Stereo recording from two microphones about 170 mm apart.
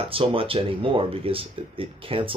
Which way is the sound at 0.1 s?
35° right (ahead or behind).